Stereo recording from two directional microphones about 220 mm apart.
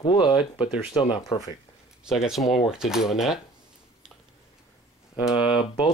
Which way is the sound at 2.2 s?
Centre (ahead or behind).